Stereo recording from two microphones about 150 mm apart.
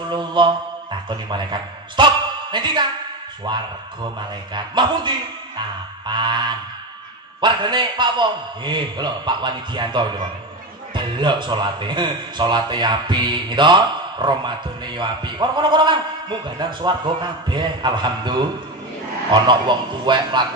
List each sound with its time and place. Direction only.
0.1 s mantra: 30° right (ahead or behind)
1.0 s a man's voice: 30° right (ahead or behind)
19.4 s speech: 30° right (ahead or behind)